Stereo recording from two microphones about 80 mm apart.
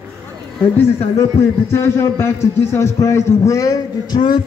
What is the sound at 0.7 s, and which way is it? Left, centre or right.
A man's voice, left.